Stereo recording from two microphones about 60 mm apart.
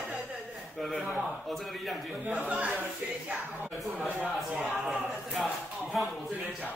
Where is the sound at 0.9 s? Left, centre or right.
Centre.